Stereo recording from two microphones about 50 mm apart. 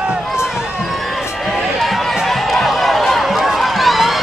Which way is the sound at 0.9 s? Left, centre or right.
Centre.